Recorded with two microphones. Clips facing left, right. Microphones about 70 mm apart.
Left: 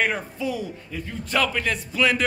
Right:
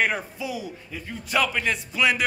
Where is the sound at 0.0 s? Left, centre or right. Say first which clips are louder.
Left 1 dB; centre.